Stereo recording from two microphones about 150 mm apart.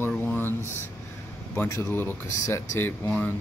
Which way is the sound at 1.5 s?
15° left (ahead or behind).